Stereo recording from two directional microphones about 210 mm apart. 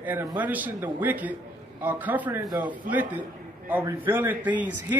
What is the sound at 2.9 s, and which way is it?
Speech, 40° right (ahead or behind).